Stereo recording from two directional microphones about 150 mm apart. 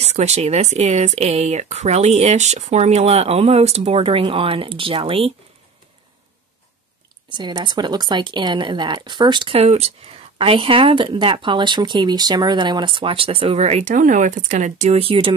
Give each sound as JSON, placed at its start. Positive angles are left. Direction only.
{"t": 0.0, "sound": "speech", "side_deg": -45}
{"t": 7.2, "sound": "speech", "side_deg": -30}